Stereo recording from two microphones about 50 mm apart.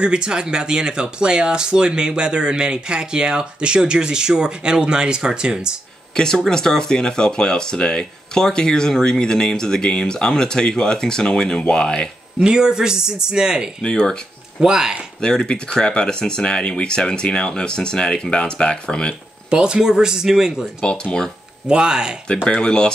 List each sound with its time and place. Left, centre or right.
0.0 s speech: centre
6.1 s speech: centre
12.4 s speech: centre
13.8 s speech: centre
14.6 s speech: centre
15.1 s speech: centre
19.5 s speech: centre
20.8 s speech: centre
21.6 s speech: centre
22.5 s speech: centre